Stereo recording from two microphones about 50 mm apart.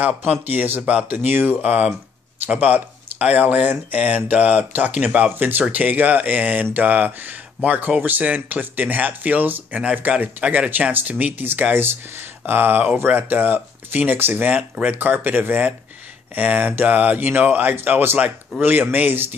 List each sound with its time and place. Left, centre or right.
0.0 s speech: right
0.8 s speech: right
1.1 s speech: right
1.6 s speech: right
5.3 s speech: right